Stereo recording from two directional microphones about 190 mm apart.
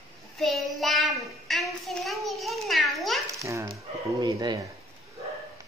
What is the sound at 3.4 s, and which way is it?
Dog, 15° right (ahead or behind).